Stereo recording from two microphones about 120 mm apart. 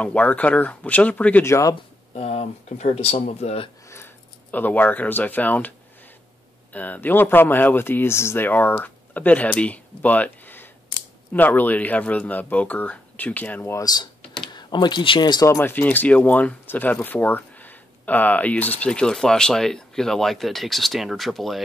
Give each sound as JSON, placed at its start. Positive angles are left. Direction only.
{"t": 0.0, "sound": "speech", "side_deg": 10}
{"t": 2.1, "sound": "speech", "side_deg": 60}
{"t": 3.9, "sound": "speech", "side_deg": 15}
{"t": 14.5, "sound": "speech", "side_deg": 40}
{"t": 15.4, "sound": "speech", "side_deg": 20}